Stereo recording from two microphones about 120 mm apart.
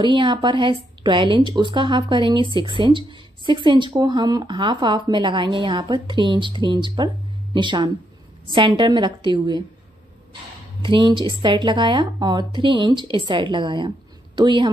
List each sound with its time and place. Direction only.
0.0 s a woman's voice: 40° right (ahead or behind)
10.8 s speech: 40° right (ahead or behind)